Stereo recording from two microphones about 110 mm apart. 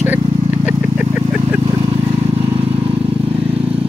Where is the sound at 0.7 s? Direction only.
15° right (ahead or behind).